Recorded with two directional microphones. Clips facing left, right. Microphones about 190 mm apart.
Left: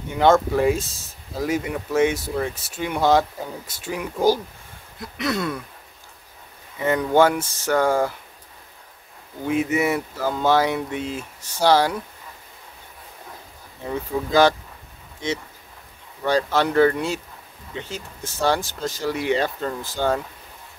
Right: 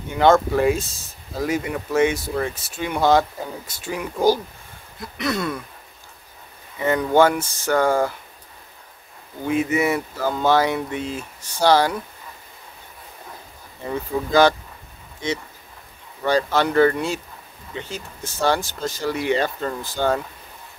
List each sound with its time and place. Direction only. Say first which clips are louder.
0.2 s speech: right 1 dB; 5° left (ahead or behind)
6.9 s speech: right 1 dB; 5° left (ahead or behind)
9.5 s speech: right 1 dB; 5° left (ahead or behind)
13.8 s speech: right 1 dB; centre (ahead or behind)
16.3 s speech: right 1 dB; centre (ahead or behind)